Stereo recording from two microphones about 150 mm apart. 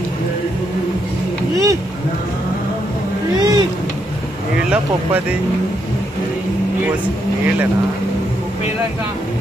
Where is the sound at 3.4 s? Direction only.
30° right (ahead or behind).